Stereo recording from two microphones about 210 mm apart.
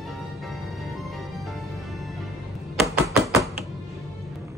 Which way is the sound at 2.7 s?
10° right (ahead or behind).